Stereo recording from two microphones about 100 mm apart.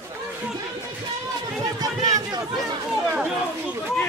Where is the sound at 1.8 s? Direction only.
40° right (ahead or behind).